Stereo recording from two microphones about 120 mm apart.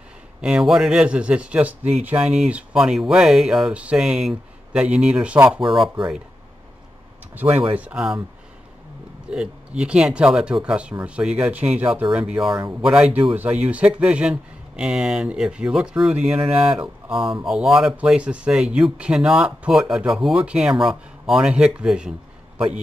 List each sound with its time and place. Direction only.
0.4 s speech: 5° right (ahead or behind)
7.3 s speech: 15° right (ahead or behind)
9.3 s speech: 5° right (ahead or behind)